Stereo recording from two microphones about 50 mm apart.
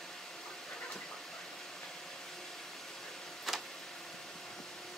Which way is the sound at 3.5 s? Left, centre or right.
Centre.